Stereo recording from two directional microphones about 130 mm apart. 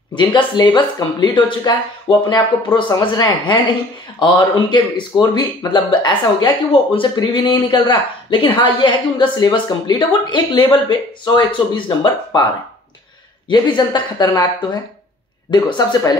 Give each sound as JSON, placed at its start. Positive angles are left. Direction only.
{"t": 0.1, "sound": "speech", "side_deg": 35}
{"t": 13.5, "sound": "speech", "side_deg": 35}